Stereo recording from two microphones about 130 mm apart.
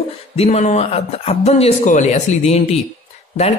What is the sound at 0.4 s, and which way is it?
Speech, 60° left (ahead or behind).